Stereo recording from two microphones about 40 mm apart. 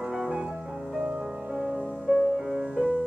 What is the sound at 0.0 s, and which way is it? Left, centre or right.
Music, centre.